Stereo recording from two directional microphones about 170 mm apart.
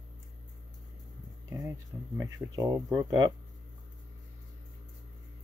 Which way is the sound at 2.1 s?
20° right (ahead or behind).